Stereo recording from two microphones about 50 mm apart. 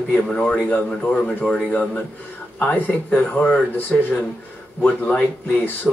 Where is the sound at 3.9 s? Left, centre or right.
Left.